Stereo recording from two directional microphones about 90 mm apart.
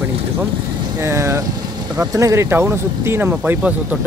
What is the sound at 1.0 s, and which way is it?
Speech, 30° right (ahead or behind).